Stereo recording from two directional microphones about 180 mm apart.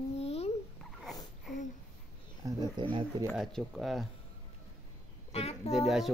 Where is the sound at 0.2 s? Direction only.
35° left (ahead or behind).